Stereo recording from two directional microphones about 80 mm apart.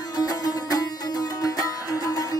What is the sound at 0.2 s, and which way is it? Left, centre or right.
Music, left.